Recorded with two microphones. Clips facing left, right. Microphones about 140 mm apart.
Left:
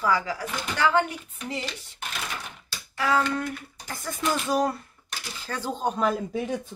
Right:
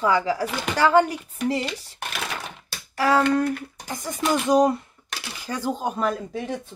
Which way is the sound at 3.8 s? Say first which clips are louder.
Right 3 dB; 15° right (ahead or behind).